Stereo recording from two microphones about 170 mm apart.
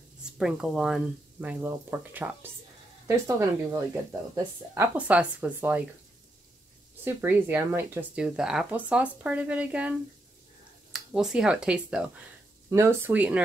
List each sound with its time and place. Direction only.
0.2 s speech: 5° right (ahead or behind)
7.1 s speech: 10° right (ahead or behind)
12.6 s speech: 15° right (ahead or behind)